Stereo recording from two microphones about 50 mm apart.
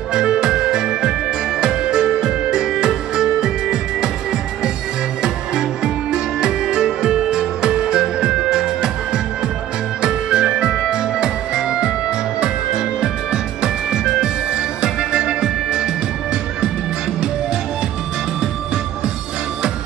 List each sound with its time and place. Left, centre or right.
0.1 s music: centre
6.1 s music: centre